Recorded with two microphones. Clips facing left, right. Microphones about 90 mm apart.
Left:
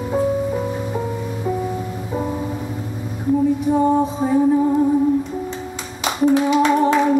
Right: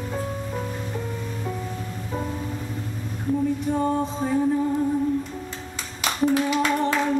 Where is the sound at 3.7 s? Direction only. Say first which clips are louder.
Left 8 dB; 15° left (ahead or behind).